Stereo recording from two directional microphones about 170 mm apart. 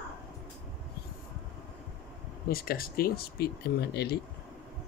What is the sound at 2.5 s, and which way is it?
Speech, 60° left (ahead or behind).